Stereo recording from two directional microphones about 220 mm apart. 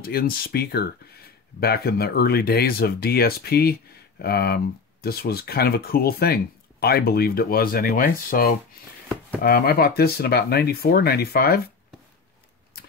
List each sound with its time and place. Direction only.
0.0 s speech: 45° left (ahead or behind)